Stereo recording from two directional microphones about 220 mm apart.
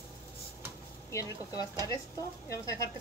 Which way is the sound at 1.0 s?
15° left (ahead or behind).